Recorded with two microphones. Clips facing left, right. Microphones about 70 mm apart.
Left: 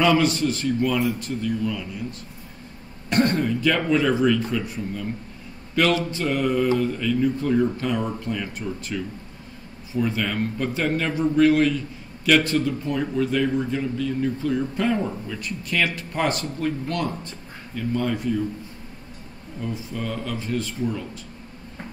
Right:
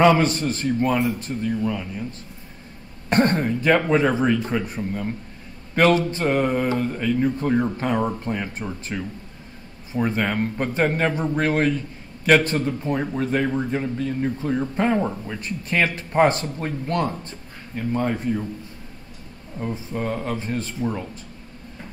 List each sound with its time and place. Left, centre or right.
0.0 s a man's voice: right
3.1 s a man's voice: right
19.6 s a man's voice: right